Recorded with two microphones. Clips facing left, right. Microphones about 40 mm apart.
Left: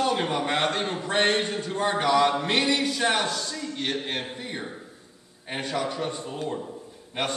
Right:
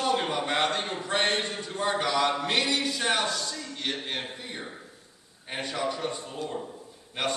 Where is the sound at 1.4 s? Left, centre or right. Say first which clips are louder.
Left 4 dB; centre.